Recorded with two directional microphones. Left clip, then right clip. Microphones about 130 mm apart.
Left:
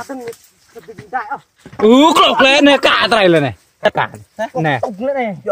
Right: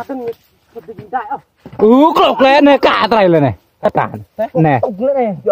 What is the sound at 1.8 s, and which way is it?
Speech, 70° right (ahead or behind).